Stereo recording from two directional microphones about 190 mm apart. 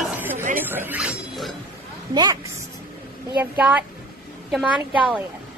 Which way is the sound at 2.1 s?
20° right (ahead or behind).